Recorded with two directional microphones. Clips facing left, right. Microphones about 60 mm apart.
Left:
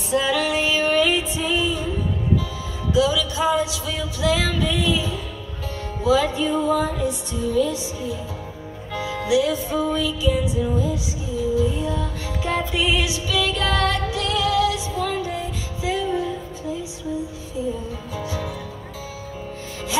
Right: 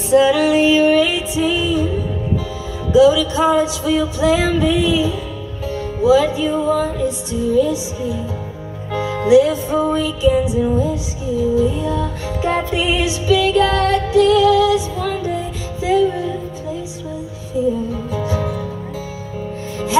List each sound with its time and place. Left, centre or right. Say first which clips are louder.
0.1 s music: right 8 dB; centre
2.9 s music: right 9 dB; right; by 7.6 s centre
8.9 s music: right 9 dB; right
18.1 s music: right 6 dB; right